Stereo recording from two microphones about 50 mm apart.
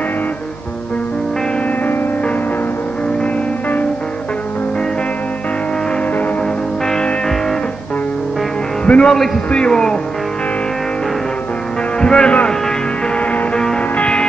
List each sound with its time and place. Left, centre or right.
6.9 s music: centre
8.8 s speech: left
12.0 s music: centre
13.2 s music: left